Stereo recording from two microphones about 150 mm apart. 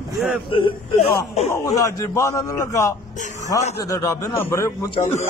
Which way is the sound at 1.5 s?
20° left (ahead or behind).